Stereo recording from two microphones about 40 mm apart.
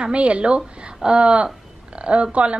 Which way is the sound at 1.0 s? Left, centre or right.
Right.